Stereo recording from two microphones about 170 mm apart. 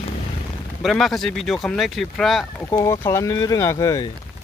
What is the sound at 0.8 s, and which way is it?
Speech, centre (ahead or behind).